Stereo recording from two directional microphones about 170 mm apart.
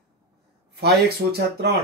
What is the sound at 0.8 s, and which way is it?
Speech, 75° right (ahead or behind).